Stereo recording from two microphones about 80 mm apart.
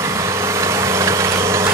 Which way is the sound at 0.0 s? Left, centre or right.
Right.